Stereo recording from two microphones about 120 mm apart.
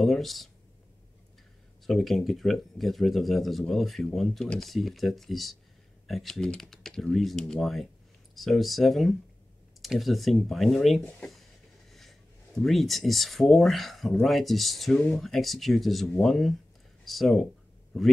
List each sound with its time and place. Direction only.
0.0 s speech: centre (ahead or behind)
1.9 s speech: centre (ahead or behind)